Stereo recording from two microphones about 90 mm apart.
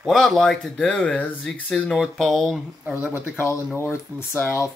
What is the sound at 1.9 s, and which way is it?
Speech, centre (ahead or behind).